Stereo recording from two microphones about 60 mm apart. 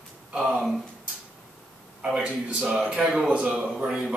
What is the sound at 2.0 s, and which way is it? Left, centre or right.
Speech, centre.